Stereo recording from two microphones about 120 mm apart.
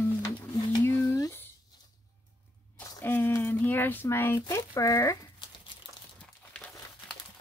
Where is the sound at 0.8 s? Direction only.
25° left (ahead or behind).